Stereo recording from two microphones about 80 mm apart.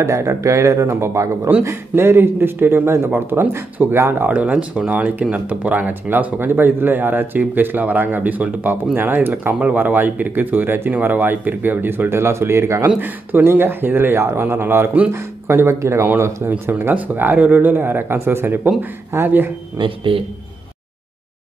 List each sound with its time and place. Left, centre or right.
0.0 s speech: right
12.8 s speech: right
16.4 s speech: right
19.8 s speech: right